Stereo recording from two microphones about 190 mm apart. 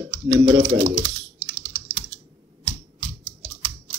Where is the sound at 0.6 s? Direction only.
35° right (ahead or behind).